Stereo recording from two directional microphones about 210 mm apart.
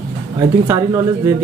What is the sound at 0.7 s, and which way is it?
Speech, 15° right (ahead or behind).